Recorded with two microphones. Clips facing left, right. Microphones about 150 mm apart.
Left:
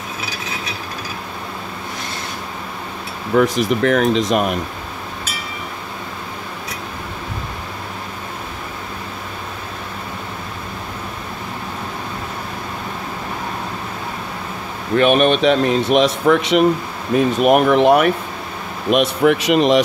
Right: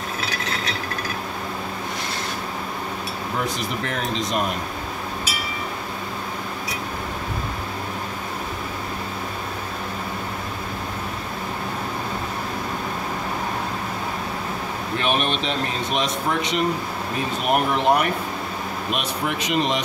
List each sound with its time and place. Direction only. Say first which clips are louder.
3.3 s speech: left 13 dB; 80° left
15.0 s speech: left 11 dB; 60° left (ahead or behind); by 18.1 s 80° left
18.9 s speech: left 13 dB; 70° left (ahead or behind)